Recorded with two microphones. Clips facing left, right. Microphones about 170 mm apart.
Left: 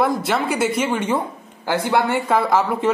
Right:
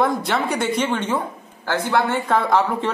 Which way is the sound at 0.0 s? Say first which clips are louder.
Left 1 dB; 5° left (ahead or behind).